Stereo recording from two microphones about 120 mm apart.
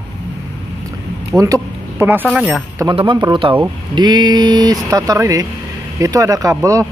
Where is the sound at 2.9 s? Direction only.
40° right (ahead or behind).